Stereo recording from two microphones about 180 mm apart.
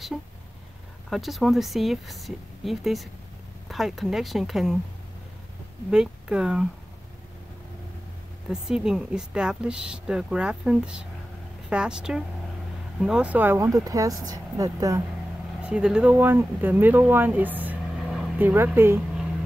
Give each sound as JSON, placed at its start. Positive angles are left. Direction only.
{"t": 1.1, "sound": "speech", "side_deg": 0}
{"t": 5.9, "sound": "speech", "side_deg": -5}
{"t": 8.5, "sound": "speech", "side_deg": -5}
{"t": 15.6, "sound": "speech", "side_deg": -5}
{"t": 18.5, "sound": "speech", "side_deg": -10}